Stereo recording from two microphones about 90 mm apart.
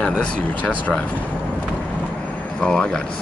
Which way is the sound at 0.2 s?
15° left (ahead or behind).